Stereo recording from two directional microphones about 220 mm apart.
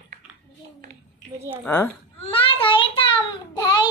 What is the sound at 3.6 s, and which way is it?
Child singing, 20° left (ahead or behind).